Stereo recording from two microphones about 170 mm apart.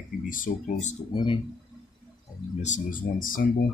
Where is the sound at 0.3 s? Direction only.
50° left (ahead or behind).